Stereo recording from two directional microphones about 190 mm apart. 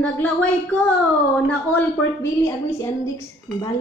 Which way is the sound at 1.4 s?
10° left (ahead or behind).